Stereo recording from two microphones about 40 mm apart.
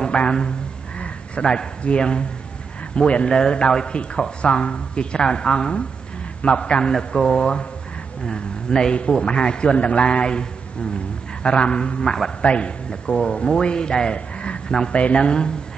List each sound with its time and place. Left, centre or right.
0.0 s a man's voice: left
11.4 s a man's voice: left